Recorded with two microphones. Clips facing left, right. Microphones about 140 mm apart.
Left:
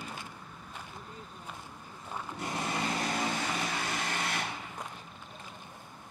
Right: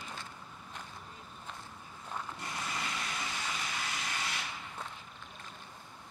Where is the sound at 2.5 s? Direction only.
40° left (ahead or behind); by 3.8 s 55° left (ahead or behind).